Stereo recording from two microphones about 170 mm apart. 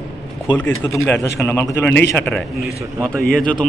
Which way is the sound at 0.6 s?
15° left (ahead or behind).